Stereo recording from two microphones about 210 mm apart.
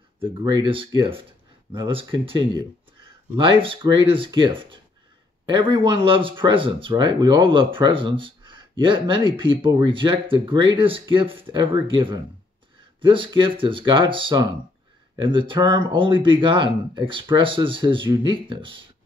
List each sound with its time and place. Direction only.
0.2 s speech: 20° right (ahead or behind)